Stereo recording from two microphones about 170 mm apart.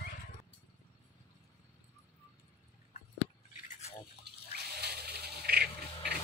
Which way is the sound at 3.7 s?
40° left (ahead or behind).